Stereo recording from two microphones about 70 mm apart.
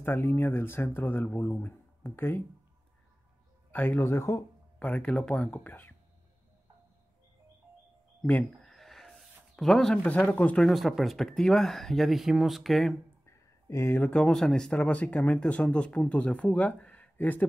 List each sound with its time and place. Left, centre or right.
0.0 s speech: left
3.7 s speech: left
4.7 s speech: left
8.2 s speech: left
8.5 s a sound: centre
10.0 s speech: left
10.6 s speech: centre
13.8 s speech: left